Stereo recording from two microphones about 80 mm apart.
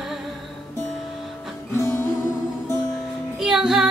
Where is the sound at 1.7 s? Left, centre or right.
Left.